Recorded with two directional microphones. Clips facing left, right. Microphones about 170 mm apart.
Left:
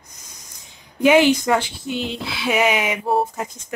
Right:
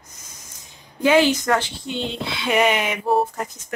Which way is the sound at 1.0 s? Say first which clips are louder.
Left 2 dB; 15° left (ahead or behind).